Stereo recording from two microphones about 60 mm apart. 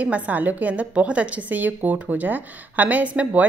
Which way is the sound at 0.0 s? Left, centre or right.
Right.